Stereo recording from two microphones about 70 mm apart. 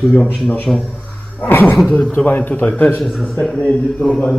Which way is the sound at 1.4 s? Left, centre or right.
Left.